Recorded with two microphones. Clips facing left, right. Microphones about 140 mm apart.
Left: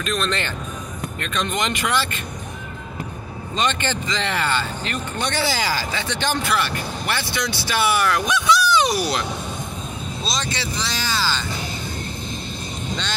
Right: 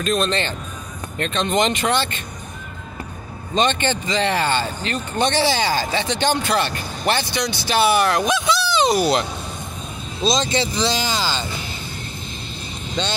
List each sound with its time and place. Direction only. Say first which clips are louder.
0.0 s speech: right 4 dB; 30° right (ahead or behind)
3.5 s speech: right 4 dB; 25° right (ahead or behind)
10.2 s speech: right 9 dB; 20° right (ahead or behind)